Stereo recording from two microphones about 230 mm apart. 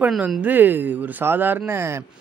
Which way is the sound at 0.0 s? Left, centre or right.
Centre.